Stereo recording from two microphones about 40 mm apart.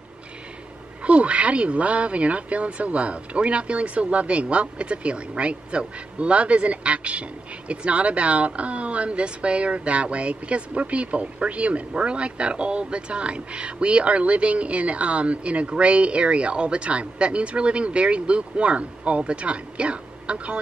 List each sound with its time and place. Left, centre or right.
1.0 s speech: right